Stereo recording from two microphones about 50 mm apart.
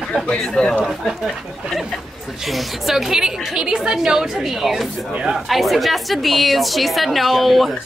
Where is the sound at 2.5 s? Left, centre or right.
Centre.